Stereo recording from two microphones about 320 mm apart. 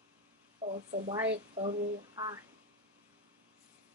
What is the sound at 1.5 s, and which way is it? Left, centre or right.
Speech, centre.